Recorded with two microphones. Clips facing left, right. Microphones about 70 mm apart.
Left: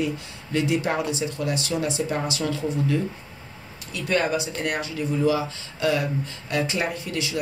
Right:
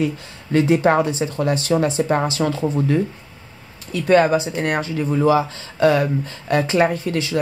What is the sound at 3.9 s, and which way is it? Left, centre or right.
Speech, right.